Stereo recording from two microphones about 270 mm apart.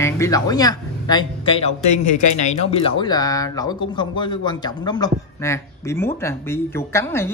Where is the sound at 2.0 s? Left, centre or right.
Left.